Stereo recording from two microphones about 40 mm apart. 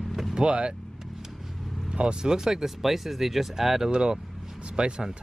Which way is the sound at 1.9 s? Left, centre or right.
Right.